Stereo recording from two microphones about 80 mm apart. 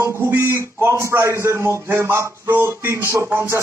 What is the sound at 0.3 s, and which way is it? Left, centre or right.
A man's voice, right.